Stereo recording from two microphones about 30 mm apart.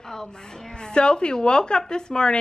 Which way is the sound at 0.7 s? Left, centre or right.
Left.